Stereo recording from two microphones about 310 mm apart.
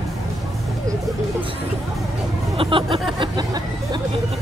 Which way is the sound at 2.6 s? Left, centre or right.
Centre.